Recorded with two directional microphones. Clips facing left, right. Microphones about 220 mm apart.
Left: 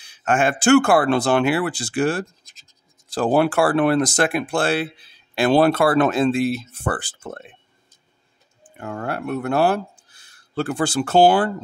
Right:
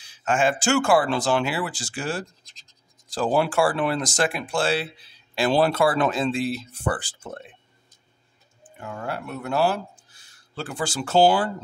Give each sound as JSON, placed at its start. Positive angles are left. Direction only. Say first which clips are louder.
{"t": 0.0, "sound": "speech", "louder": "left 2 dB", "side_deg": 60}
{"t": 8.7, "sound": "speech", "louder": "left 4 dB", "side_deg": 55}